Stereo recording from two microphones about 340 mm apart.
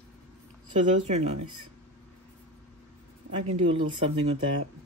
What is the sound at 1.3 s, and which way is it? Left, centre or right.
Speech, right.